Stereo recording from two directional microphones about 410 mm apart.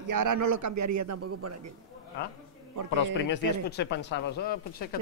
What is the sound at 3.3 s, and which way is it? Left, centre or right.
Speech, left.